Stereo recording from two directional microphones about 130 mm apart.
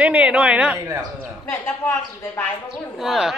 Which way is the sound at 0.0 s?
10° right (ahead or behind).